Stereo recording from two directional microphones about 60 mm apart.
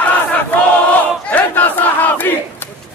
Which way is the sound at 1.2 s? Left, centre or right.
Left.